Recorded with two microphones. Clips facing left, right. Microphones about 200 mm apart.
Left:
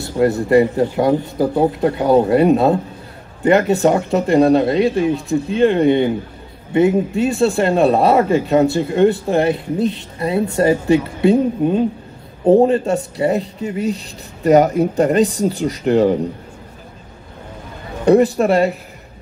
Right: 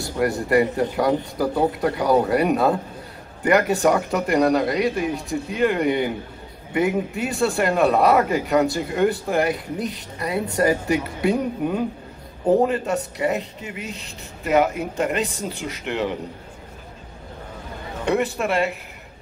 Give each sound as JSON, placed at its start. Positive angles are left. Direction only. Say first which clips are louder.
{"t": 0.2, "sound": "speech", "louder": "left 6 dB", "side_deg": 25}
{"t": 18.0, "sound": "speech", "louder": "left 10 dB", "side_deg": 35}